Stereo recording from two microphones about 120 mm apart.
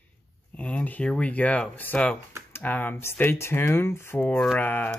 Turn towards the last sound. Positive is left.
turn(degrees=15)  # may be behind; listen again after turning